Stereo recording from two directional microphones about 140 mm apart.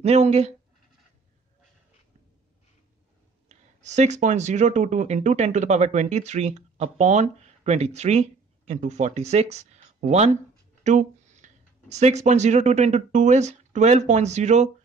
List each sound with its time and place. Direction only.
0.0 s speech: 50° right (ahead or behind)
3.4 s speech: 55° right (ahead or behind)